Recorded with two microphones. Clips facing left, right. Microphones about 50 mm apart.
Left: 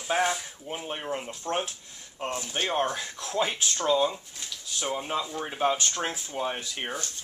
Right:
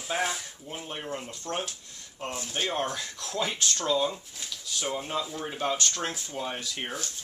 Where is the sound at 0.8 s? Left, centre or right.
Centre.